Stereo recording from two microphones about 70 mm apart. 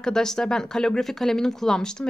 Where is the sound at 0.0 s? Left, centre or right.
Centre.